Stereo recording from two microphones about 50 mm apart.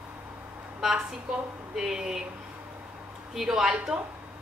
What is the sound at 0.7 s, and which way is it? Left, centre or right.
A woman's voice, centre.